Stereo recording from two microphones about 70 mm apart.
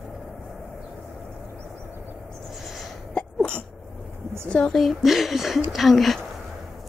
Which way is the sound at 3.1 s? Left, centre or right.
Centre.